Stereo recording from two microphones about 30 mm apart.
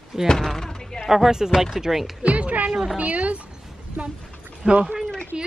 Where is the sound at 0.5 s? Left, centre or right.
Centre.